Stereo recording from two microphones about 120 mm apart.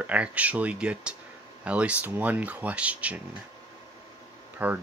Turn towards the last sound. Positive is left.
turn(degrees=-15)  # may be behind; listen again after turning